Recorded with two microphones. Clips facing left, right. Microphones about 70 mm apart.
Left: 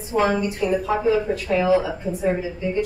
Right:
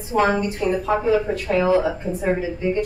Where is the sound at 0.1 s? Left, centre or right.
Right.